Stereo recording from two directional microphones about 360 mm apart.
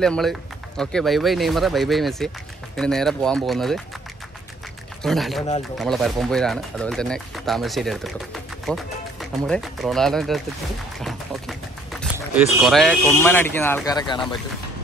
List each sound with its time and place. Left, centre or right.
0.0 s speech: centre
5.0 s speech: centre
11.0 s a sound: centre
12.6 s speech: centre